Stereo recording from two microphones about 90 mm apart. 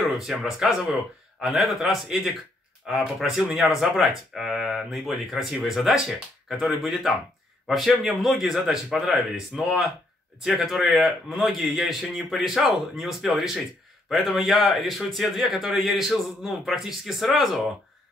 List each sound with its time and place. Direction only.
0.1 s speech: centre (ahead or behind)